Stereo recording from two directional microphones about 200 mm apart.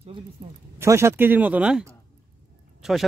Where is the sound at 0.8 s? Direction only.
15° right (ahead or behind).